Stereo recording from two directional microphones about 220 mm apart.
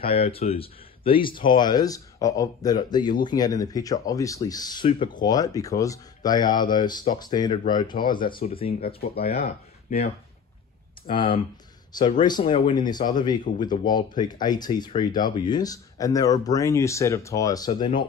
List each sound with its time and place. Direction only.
0.0 s speech: 25° left (ahead or behind)
8.8 s speech: 45° left (ahead or behind)
12.0 s speech: 20° left (ahead or behind)